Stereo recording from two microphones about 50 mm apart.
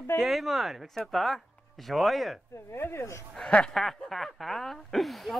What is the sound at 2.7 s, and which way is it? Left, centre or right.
Speech, left.